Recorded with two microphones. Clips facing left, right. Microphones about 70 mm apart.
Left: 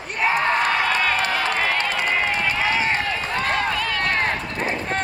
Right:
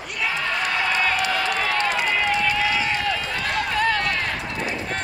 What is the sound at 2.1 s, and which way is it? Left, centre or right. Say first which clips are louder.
Run: even; left.